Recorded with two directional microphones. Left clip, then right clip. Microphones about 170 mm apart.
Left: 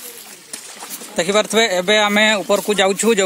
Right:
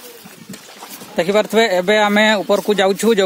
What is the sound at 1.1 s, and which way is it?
Speech, 20° right (ahead or behind).